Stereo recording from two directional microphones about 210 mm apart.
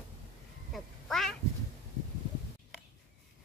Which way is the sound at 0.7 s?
Centre (ahead or behind).